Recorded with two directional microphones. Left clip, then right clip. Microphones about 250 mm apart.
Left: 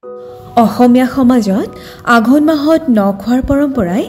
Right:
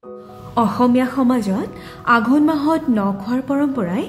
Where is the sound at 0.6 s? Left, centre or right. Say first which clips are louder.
Left 7 dB; centre.